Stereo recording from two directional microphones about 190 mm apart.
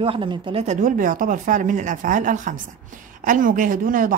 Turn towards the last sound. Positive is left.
turn(degrees=-45)  # may be behind; listen again after turning